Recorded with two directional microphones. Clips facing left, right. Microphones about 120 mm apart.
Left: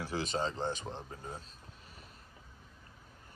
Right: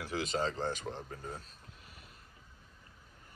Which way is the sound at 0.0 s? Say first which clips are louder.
Even; 30° left (ahead or behind).